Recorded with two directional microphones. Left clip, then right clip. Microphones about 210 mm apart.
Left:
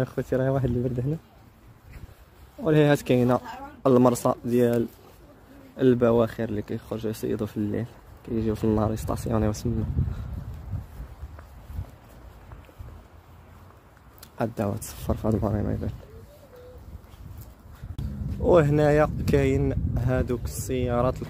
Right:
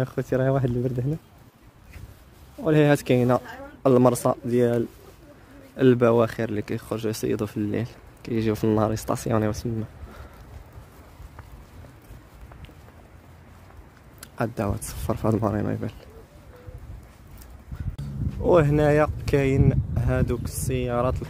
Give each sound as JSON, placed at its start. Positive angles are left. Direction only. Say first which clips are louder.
{"t": 0.0, "sound": "speech", "louder": "right 1 dB", "side_deg": -10}
{"t": 2.6, "sound": "speech", "louder": "right 1 dB", "side_deg": -5}
{"t": 14.2, "sound": "speech", "louder": "right 1 dB", "side_deg": -10}
{"t": 18.4, "sound": "speech", "louder": "even", "side_deg": -5}